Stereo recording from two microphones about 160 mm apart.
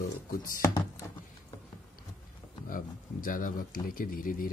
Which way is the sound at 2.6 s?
60° left (ahead or behind).